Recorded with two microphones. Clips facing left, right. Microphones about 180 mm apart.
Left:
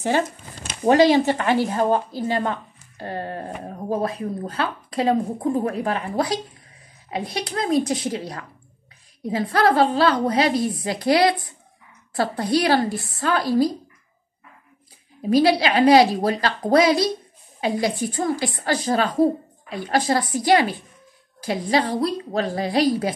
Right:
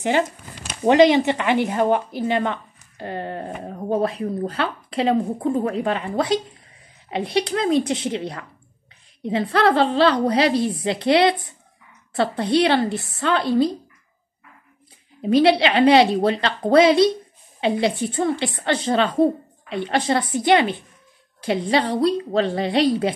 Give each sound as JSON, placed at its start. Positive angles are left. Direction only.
{"t": 0.8, "sound": "a woman's voice", "side_deg": -20}
{"t": 15.4, "sound": "a woman's voice", "side_deg": -25}